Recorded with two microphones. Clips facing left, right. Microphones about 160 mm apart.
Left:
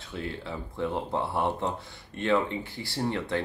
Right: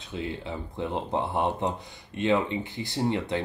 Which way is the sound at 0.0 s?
20° right (ahead or behind).